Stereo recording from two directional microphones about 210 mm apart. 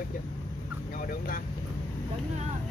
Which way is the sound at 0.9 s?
40° left (ahead or behind).